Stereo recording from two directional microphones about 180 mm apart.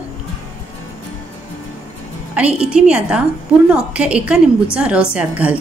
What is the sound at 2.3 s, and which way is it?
A woman's voice, 5° right (ahead or behind).